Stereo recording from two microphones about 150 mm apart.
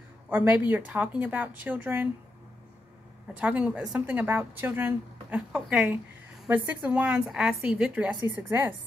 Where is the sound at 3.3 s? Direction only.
10° right (ahead or behind).